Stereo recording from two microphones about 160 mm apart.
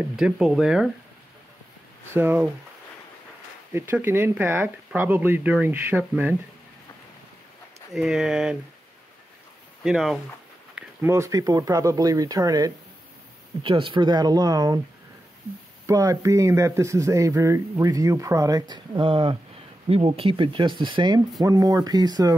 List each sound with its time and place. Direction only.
0.1 s speech: 5° right (ahead or behind)
2.1 s speech: 10° right (ahead or behind)
3.7 s speech: 15° right (ahead or behind)
7.9 s speech: 5° right (ahead or behind)
9.8 s speech: centre (ahead or behind)
10.7 s a sound: 5° right (ahead or behind)
11.1 s speech: 20° right (ahead or behind)
13.6 s speech: 30° right (ahead or behind)
15.9 s speech: 20° right (ahead or behind)